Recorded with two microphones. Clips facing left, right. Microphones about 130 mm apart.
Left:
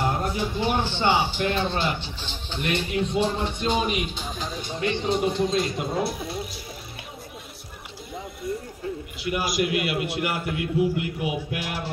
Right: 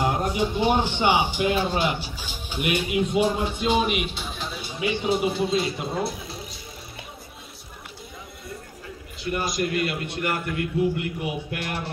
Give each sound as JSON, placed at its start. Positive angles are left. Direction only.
{"t": 0.0, "sound": "speech", "side_deg": -15}
{"t": 4.3, "sound": "music", "side_deg": 40}
{"t": 4.6, "sound": "speech", "side_deg": -10}
{"t": 9.2, "sound": "a man's voice", "side_deg": 5}